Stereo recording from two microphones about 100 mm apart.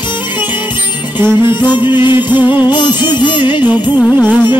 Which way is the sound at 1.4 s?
50° left (ahead or behind).